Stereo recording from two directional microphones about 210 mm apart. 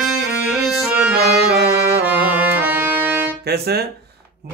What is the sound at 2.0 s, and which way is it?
Music, 5° right (ahead or behind).